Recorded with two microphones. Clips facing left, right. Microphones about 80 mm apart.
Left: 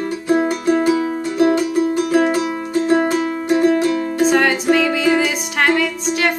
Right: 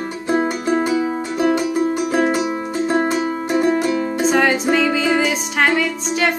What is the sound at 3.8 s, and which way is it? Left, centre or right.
Music, centre.